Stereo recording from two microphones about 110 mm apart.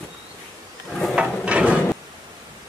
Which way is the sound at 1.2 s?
10° right (ahead or behind).